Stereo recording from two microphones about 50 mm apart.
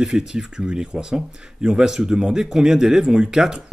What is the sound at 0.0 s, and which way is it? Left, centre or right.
Speech, centre.